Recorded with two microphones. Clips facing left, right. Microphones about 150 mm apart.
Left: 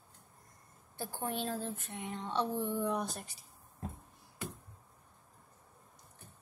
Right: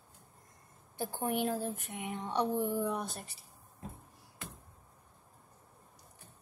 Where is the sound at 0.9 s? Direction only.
15° right (ahead or behind).